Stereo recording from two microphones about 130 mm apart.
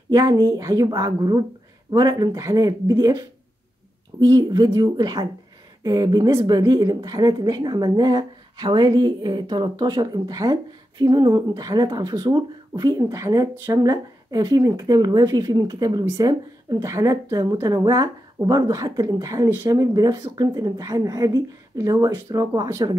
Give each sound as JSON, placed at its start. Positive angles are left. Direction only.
{"t": 0.1, "sound": "a woman's voice", "side_deg": -30}